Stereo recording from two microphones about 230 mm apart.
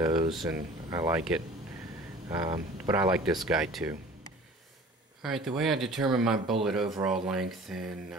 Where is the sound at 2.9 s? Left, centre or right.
Centre.